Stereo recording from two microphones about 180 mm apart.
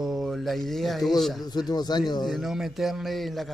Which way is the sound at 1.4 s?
20° left (ahead or behind).